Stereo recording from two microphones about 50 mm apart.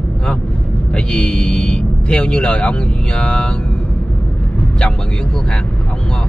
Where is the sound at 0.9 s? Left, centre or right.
Centre.